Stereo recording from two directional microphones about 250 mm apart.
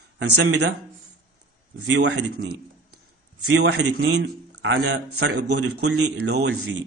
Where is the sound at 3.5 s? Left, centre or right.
Right.